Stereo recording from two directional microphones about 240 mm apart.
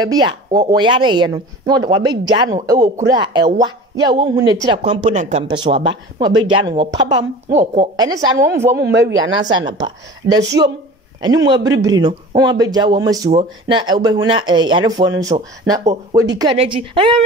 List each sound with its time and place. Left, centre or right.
0.0 s speech: centre
8.7 s speech: right
11.1 s speech: centre